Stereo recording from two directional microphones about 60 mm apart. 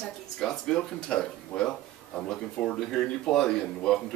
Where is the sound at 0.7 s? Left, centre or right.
Centre.